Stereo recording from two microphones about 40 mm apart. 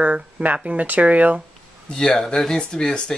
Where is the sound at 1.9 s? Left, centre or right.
Left.